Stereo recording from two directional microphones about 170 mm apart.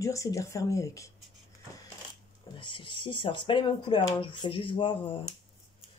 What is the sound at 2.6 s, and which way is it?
Speech, 30° left (ahead or behind).